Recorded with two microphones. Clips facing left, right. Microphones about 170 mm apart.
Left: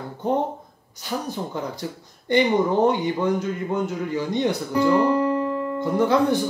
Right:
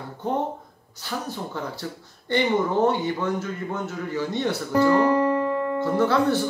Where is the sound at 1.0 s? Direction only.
15° left (ahead or behind).